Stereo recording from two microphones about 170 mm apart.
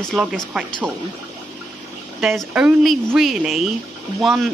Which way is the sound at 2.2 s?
Centre (ahead or behind).